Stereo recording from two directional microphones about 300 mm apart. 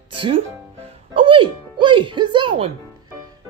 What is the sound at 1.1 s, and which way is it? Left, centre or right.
Speech, centre.